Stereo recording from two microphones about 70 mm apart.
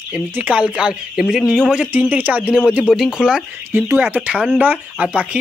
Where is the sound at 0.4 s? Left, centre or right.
Centre.